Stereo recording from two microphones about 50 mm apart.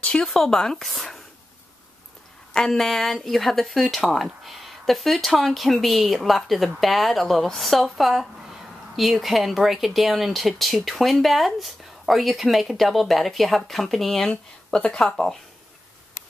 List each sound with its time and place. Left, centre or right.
0.0 s a sound: centre
0.3 s speech: centre
2.5 s speech: centre
14.3 s speech: left